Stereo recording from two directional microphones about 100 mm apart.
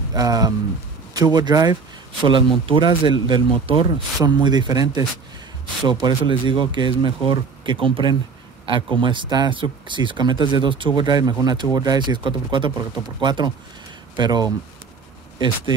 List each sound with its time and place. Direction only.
0.1 s speech: 40° right (ahead or behind)
2.2 s speech: 55° right (ahead or behind)